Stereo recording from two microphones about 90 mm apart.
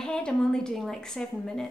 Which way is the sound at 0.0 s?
10° left (ahead or behind).